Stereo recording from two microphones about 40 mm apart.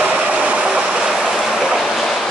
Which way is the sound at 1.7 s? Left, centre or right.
Centre.